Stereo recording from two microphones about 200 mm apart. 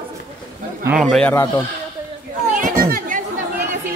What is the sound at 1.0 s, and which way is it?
Speech, 5° left (ahead or behind).